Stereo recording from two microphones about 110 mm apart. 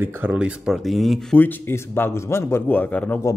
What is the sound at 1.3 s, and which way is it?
A man's voice, 20° left (ahead or behind).